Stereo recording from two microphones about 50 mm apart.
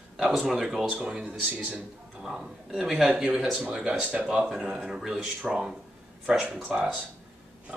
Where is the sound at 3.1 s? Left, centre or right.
Centre.